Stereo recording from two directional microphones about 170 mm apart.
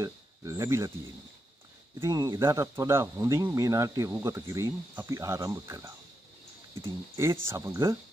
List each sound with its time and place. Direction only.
0.0 s speech: 20° right (ahead or behind)
2.0 s speech: 20° right (ahead or behind)
7.4 s speech: 15° right (ahead or behind)